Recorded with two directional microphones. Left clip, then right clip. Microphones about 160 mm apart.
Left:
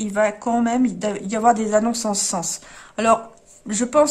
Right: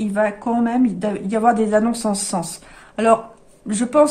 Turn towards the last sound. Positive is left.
turn(degrees=20)  # may be behind; listen again after turning